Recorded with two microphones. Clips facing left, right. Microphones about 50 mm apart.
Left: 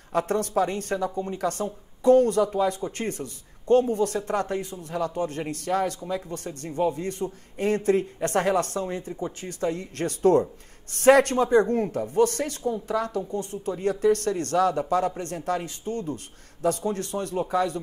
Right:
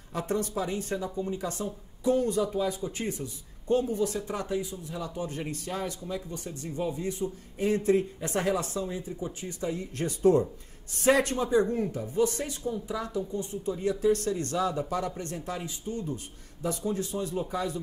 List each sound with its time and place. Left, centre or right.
0.1 s speech: left